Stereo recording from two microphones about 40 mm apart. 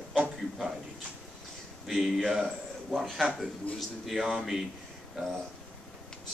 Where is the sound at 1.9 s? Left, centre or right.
Centre.